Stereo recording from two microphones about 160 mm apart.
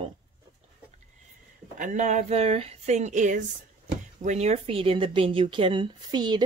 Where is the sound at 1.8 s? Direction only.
50° right (ahead or behind).